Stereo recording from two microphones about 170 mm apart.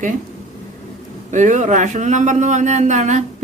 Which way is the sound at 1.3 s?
45° right (ahead or behind).